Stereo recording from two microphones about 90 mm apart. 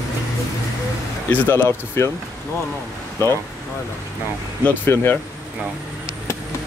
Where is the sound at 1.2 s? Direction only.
25° left (ahead or behind).